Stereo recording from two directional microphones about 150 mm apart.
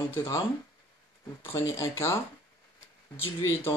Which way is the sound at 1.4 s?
20° left (ahead or behind).